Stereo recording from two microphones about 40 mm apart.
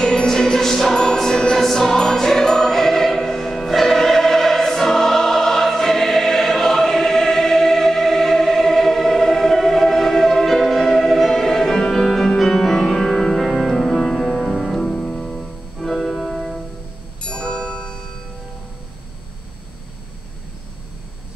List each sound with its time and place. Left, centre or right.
0.0 s music: centre
1.6 s choir: centre
10.6 s music: centre
14.8 s music: centre
17.2 s tubular bells: left